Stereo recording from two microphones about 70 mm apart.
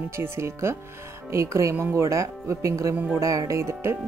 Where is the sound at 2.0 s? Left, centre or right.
Right.